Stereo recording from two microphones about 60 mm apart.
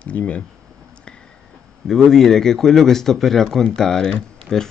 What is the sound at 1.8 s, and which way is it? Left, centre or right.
Speech, centre.